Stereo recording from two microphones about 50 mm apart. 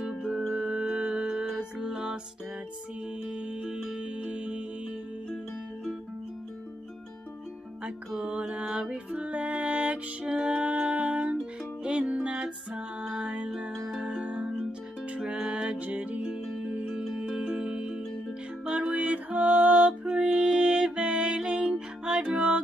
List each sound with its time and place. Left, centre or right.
0.6 s music: centre
3.3 s music: right
8.3 s mantra: right
8.9 s music: right
17.0 s music: centre